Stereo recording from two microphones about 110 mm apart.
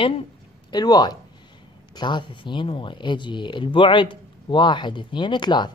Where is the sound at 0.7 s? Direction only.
40° left (ahead or behind).